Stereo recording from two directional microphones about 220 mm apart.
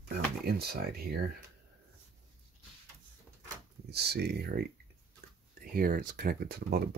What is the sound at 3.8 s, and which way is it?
Speech, 45° right (ahead or behind).